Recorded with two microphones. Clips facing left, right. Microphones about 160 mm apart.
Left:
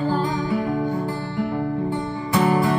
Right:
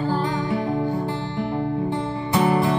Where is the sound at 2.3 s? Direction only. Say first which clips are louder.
Left 1 dB; 20° right (ahead or behind).